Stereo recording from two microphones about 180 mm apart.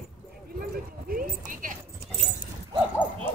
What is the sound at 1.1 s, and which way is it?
Clip-clop, 50° right (ahead or behind).